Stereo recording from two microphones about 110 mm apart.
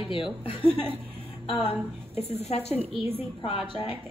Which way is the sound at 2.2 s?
70° left (ahead or behind).